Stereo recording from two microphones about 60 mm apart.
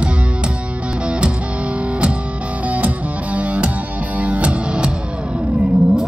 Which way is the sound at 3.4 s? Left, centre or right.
Right.